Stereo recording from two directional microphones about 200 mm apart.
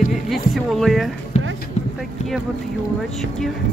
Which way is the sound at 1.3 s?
35° left (ahead or behind).